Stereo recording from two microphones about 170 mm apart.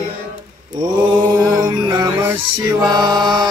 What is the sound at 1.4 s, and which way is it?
Music, 20° right (ahead or behind).